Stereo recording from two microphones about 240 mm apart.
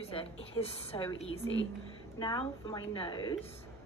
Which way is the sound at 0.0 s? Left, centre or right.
Left.